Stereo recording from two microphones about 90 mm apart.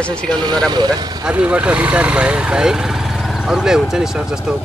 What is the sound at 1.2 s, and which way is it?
Speech, 10° right (ahead or behind).